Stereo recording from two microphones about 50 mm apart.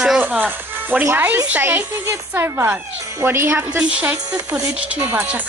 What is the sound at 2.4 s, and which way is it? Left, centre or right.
Speech, right.